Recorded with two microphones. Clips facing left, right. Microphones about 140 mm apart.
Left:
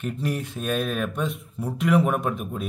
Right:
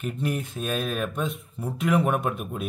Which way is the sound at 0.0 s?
5° right (ahead or behind).